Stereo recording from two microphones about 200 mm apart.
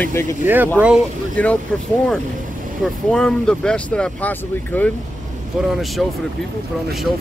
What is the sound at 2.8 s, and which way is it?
Speech, 5° left (ahead or behind).